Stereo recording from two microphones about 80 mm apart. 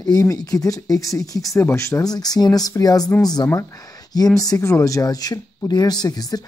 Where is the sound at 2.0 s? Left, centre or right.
Left.